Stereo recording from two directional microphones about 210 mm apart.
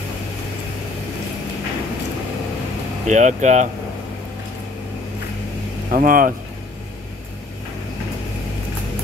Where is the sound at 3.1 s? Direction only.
35° right (ahead or behind).